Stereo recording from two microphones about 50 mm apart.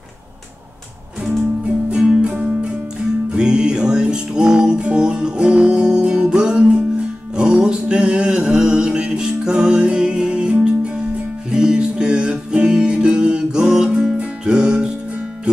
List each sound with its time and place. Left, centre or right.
1.9 s music: centre